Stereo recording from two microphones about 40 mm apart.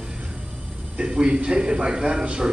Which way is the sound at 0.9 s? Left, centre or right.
Right.